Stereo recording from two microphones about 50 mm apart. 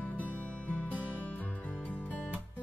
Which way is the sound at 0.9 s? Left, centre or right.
Right.